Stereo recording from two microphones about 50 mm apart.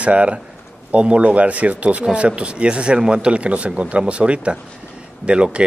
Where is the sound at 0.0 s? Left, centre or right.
Right.